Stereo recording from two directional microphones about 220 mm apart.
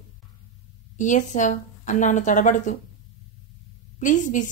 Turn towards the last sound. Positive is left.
turn(degrees=35)  # may be behind; listen again after turning